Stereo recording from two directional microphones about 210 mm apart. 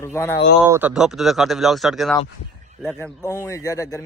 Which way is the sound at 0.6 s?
10° right (ahead or behind).